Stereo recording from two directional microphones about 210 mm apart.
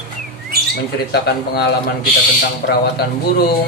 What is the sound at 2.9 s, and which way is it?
Speech, 50° left (ahead or behind).